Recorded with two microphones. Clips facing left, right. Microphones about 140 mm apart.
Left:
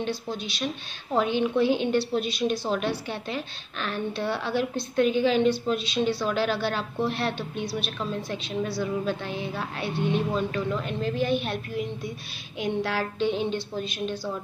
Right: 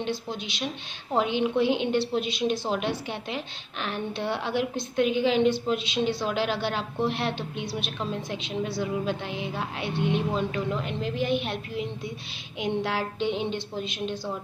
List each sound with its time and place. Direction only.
0.0 s a woman's voice: 20° right (ahead or behind)